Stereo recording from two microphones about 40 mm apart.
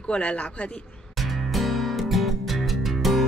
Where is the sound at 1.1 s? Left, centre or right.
Centre.